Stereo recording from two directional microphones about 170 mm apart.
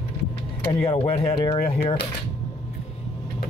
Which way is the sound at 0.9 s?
35° left (ahead or behind).